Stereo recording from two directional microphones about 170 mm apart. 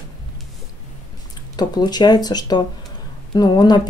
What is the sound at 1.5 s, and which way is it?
Speech, 25° left (ahead or behind).